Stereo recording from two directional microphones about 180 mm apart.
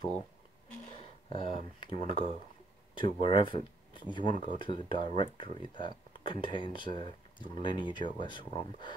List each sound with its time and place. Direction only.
1.3 s speech: 30° left (ahead or behind)
4.3 s speech: 45° right (ahead or behind)
4.6 s speech: 25° left (ahead or behind)